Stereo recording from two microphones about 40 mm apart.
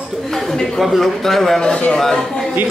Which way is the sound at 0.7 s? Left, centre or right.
Centre.